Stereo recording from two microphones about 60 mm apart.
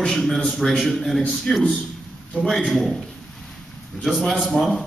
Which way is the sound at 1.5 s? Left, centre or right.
Centre.